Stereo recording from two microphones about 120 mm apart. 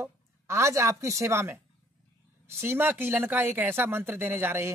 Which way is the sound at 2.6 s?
20° right (ahead or behind).